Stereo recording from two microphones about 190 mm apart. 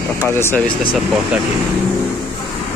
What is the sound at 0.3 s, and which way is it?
Speech, 10° left (ahead or behind).